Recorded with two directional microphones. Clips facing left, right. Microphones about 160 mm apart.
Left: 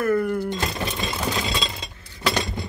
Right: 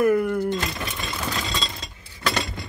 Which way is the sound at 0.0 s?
15° right (ahead or behind).